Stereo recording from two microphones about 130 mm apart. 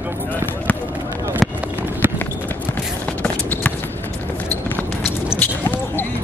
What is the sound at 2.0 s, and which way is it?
Run, 15° right (ahead or behind).